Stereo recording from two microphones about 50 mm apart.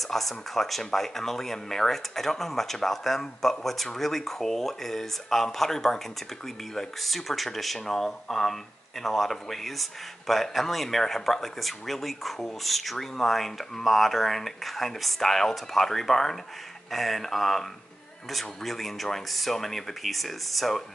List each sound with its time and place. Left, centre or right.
0.0 s speech: centre